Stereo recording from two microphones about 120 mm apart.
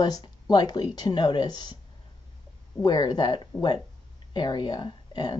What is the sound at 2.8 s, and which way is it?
Speech, 40° left (ahead or behind).